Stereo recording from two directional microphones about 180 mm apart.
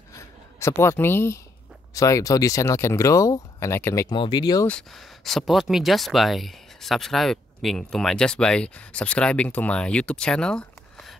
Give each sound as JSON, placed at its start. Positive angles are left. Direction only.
{"t": 0.1, "sound": "a sound", "side_deg": 15}
{"t": 2.0, "sound": "speech", "side_deg": 20}
{"t": 4.6, "sound": "speech", "side_deg": 5}